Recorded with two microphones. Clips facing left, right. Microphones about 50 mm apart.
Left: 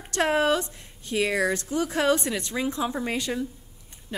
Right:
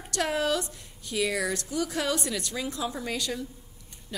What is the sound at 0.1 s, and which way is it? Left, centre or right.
A woman's voice, left.